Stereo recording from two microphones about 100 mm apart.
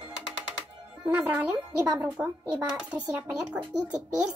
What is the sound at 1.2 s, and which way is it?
A child's voice, 15° right (ahead or behind).